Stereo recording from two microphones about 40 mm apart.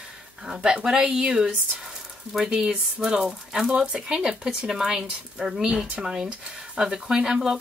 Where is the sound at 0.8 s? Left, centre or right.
Centre.